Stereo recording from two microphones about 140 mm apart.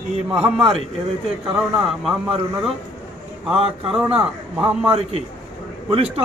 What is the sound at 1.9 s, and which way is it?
Speech, centre (ahead or behind).